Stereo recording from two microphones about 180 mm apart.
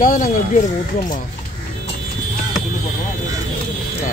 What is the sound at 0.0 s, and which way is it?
Speech, 45° left (ahead or behind).